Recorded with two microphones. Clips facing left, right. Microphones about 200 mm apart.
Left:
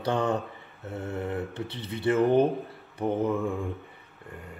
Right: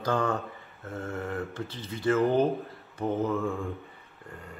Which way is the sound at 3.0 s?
15° left (ahead or behind).